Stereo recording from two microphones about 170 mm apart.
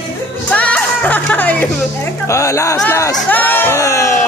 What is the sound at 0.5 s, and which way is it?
Music, 5° left (ahead or behind).